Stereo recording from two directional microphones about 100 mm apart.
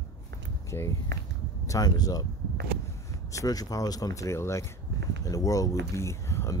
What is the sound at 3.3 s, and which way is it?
Speech, 35° left (ahead or behind).